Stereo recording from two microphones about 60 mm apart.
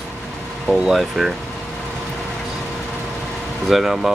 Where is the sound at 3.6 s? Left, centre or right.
Centre.